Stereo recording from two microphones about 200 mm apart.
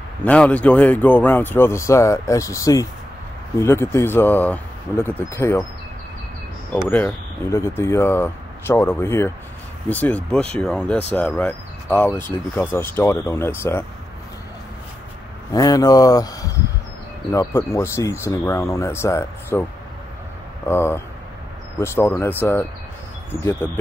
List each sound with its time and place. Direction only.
0.2 s speech: 5° left (ahead or behind)
6.7 s speech: 5° left (ahead or behind)
15.5 s speech: 20° left (ahead or behind)
20.6 s speech: 10° left (ahead or behind)